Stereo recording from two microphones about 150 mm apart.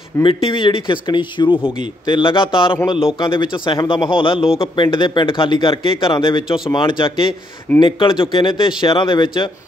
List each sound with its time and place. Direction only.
0.2 s speech: 35° left (ahead or behind)